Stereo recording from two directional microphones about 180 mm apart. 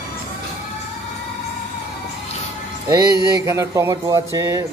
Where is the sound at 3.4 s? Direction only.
15° right (ahead or behind).